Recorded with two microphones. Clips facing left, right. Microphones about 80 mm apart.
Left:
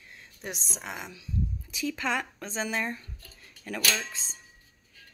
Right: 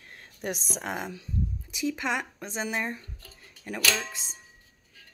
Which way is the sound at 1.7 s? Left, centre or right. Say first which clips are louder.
Right 1 dB; centre.